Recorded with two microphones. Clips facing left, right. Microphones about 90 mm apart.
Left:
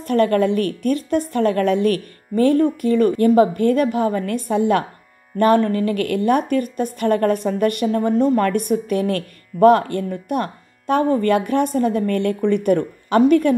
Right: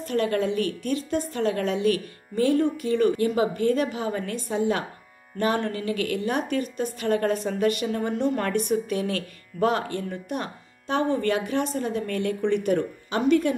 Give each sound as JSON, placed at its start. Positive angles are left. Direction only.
{"t": 0.0, "sound": "a woman's voice", "side_deg": 55}